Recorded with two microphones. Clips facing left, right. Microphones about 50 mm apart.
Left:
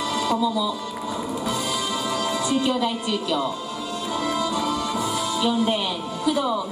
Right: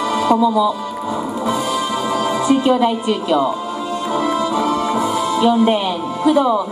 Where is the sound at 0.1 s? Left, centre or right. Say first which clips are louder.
Right 9 dB; right.